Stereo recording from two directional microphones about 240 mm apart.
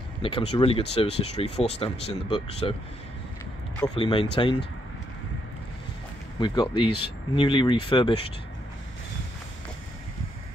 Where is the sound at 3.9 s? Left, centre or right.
Left.